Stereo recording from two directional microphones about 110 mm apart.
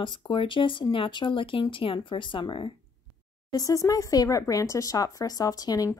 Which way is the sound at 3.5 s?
35° left (ahead or behind).